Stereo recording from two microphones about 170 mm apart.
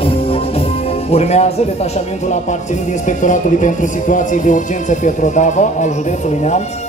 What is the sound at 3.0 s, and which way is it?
Speech, 45° left (ahead or behind).